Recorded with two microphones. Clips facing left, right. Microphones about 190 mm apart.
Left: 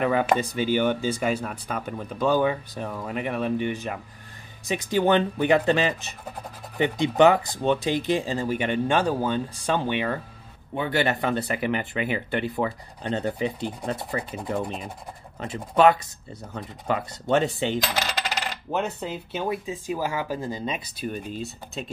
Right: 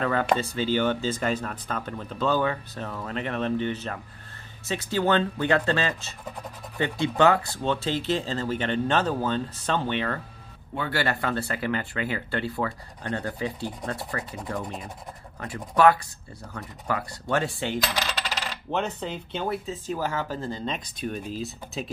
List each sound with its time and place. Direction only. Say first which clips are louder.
0.0 s speech: left 2 dB; 15° left (ahead or behind)
18.7 s speech: even; 5° left (ahead or behind)